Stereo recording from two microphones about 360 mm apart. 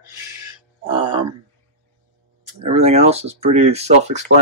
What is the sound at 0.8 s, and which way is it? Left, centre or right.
Speech, centre.